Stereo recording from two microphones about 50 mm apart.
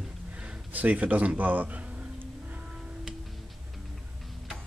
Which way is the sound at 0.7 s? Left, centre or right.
Right.